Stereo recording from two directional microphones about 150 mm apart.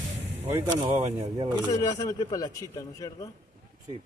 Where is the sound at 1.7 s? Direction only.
20° left (ahead or behind).